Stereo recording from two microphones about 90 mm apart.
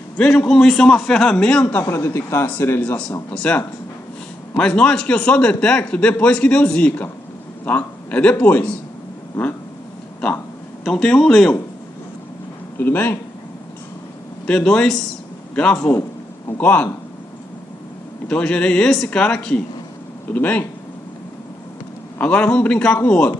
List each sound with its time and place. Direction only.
0.2 s a man's voice: 10° left (ahead or behind)
1.8 s a man's voice: 25° left (ahead or behind)
10.8 s speech: 5° left (ahead or behind)
12.7 s speech: 20° left (ahead or behind)
14.4 s a man's voice: 10° left (ahead or behind)
18.3 s a man's voice: 10° left (ahead or behind)
22.2 s a man's voice: 15° left (ahead or behind)